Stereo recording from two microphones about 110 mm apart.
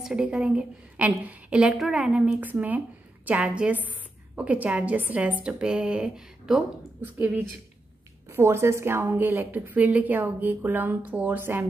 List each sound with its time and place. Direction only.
0.0 s a woman's voice: 10° right (ahead or behind)
7.0 s a woman's voice: 20° right (ahead or behind)